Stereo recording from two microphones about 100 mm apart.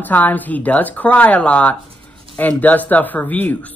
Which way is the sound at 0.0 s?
15° left (ahead or behind).